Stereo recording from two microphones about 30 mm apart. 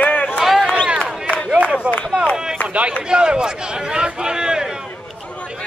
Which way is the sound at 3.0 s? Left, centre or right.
Right.